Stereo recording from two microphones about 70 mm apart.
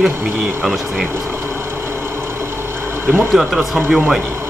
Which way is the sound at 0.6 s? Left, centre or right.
Centre.